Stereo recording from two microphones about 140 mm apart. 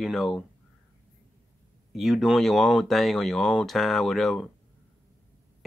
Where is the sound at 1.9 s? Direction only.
Centre (ahead or behind).